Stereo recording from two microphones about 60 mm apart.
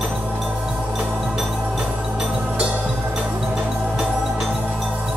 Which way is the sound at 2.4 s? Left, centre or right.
Right.